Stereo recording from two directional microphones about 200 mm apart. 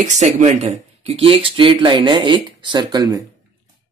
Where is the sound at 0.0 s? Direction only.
35° right (ahead or behind); by 3.2 s 20° right (ahead or behind).